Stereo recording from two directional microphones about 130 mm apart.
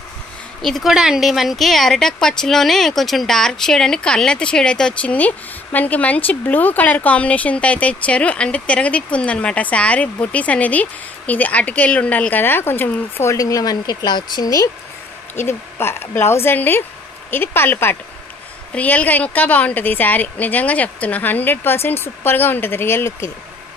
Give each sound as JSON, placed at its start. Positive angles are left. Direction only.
{"t": 0.6, "sound": "speech", "side_deg": 0}